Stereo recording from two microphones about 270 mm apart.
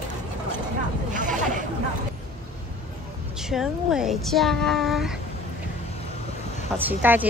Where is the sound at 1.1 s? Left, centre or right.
Right.